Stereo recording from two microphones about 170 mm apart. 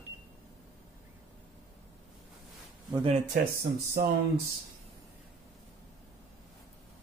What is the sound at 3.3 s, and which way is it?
Speech, 65° right (ahead or behind).